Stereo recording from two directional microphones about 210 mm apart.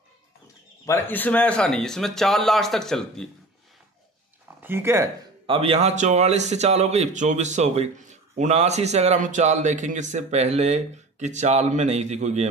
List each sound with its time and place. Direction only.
0.8 s speech: 10° left (ahead or behind)
4.6 s speech: 10° right (ahead or behind)
5.6 s speech: 30° right (ahead or behind)